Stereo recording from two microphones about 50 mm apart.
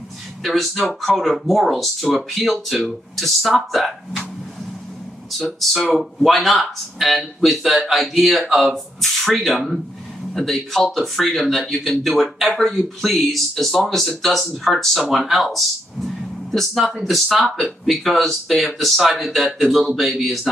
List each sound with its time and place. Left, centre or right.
0.4 s speech: centre
5.6 s speech: centre